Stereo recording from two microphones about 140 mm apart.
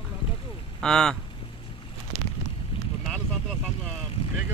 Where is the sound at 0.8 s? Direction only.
5° left (ahead or behind).